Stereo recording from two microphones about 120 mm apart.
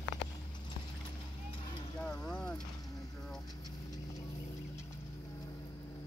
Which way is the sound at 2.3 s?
10° left (ahead or behind).